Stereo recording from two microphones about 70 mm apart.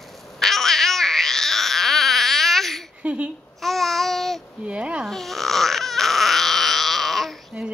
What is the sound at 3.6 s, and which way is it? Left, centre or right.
Babbling, centre.